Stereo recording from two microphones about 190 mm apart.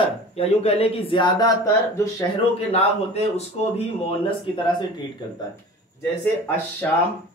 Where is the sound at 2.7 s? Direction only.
35° left (ahead or behind).